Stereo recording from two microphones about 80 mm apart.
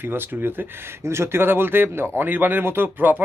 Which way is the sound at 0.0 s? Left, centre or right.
Right.